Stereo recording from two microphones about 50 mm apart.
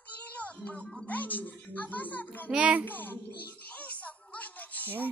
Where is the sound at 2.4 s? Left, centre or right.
Right.